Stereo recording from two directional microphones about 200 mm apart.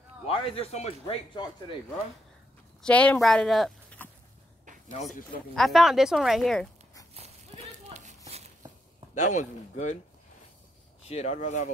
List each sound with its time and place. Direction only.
0.3 s a man's voice: 25° left (ahead or behind)
2.8 s speech: 5° left (ahead or behind)
5.6 s speech: centre (ahead or behind)
7.2 s a sound: 30° right (ahead or behind)
9.1 s speech: 35° left (ahead or behind)
11.1 s speech: 30° left (ahead or behind)